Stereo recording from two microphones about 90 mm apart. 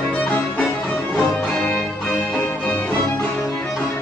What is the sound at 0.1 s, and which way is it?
Music, 15° left (ahead or behind).